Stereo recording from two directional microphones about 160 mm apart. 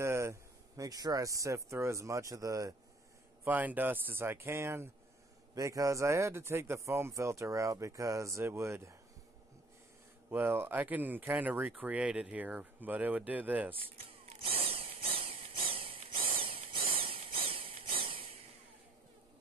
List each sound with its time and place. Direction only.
0.0 s speech: 15° right (ahead or behind)
10.3 s speech: 15° right (ahead or behind)
13.7 s a sound: 35° right (ahead or behind)